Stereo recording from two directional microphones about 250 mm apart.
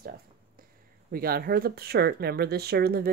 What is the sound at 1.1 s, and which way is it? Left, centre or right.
Speech, right.